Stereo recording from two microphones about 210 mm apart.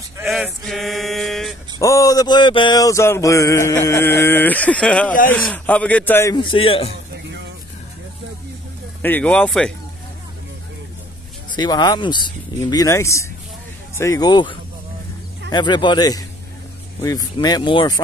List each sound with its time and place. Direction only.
0.2 s male singing: centre (ahead or behind)
1.8 s mantra: 15° left (ahead or behind)
6.3 s speech: 25° left (ahead or behind)
9.0 s speech: 5° left (ahead or behind)
11.5 s speech: 20° left (ahead or behind)
13.9 s mantra: 15° left (ahead or behind)
15.5 s speech: 20° left (ahead or behind)